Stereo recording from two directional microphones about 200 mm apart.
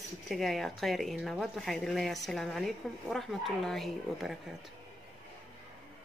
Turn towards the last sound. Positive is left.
turn(degrees=0)  # may be behind; listen again after turning